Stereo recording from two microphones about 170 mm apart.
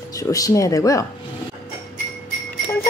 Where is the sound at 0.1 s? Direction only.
20° left (ahead or behind).